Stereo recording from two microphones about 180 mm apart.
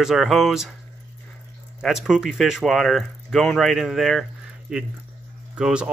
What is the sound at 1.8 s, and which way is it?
Speech, centre (ahead or behind).